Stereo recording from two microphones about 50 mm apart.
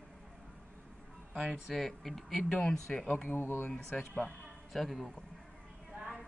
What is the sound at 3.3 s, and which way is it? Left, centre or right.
Speech, left.